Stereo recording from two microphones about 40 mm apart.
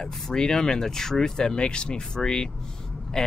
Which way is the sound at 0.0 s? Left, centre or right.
Centre.